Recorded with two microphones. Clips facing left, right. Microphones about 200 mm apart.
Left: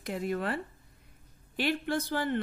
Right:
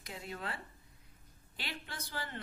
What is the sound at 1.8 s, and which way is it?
Speech, 55° left (ahead or behind).